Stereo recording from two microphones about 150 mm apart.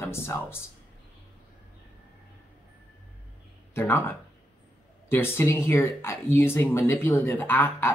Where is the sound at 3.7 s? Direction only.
15° left (ahead or behind).